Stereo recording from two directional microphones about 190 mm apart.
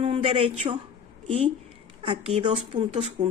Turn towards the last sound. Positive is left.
turn(degrees=-35)  # may be behind; listen again after turning